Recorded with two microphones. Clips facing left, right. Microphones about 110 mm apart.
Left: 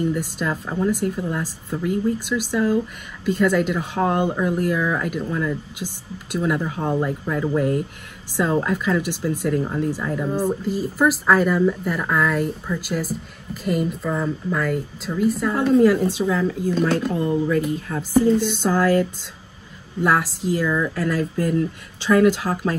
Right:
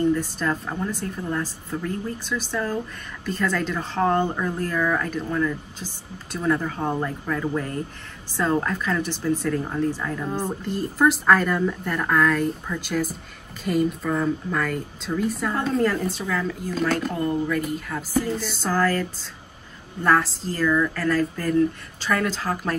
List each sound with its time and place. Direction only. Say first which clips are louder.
0.0 s a woman's voice: right 1 dB; 15° left (ahead or behind)
17.5 s a woman's voice: left 4 dB; 25° left (ahead or behind)